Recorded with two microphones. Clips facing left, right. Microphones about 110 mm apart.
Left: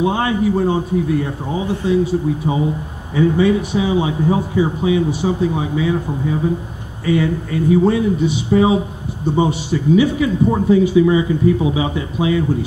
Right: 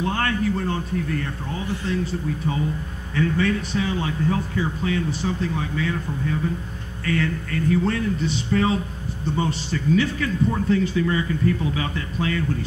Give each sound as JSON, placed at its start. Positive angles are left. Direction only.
{"t": 0.0, "sound": "speech", "side_deg": 15}